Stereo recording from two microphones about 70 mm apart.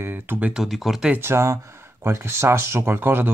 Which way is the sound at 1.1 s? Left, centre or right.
Right.